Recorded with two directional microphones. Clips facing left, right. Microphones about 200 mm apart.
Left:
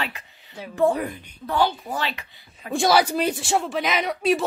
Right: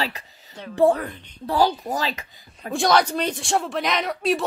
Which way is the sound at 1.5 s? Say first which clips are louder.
Right 2 dB; 40° right (ahead or behind).